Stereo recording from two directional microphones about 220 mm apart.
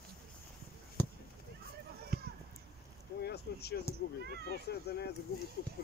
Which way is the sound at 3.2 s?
45° left (ahead or behind).